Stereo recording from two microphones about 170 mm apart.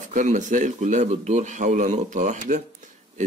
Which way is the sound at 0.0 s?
50° right (ahead or behind).